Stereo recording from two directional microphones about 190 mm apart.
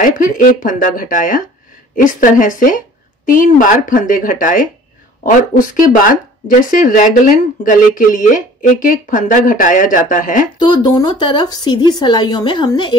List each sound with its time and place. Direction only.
0.2 s speech: 45° left (ahead or behind)
10.6 s speech: 20° left (ahead or behind)